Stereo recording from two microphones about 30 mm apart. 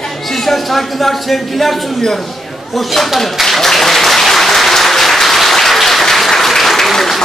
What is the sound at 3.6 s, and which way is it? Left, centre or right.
Applause, centre.